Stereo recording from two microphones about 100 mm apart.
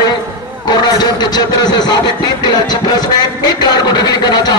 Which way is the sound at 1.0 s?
45° left (ahead or behind).